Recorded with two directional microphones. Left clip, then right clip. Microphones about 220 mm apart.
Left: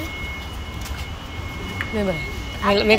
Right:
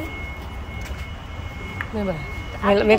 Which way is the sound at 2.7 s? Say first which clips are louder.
Right 1 dB; 10° right (ahead or behind).